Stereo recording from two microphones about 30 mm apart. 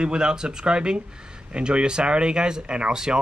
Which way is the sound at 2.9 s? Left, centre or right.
Right.